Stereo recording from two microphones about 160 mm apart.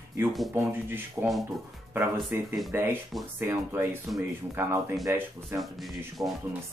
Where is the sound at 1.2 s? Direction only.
20° right (ahead or behind).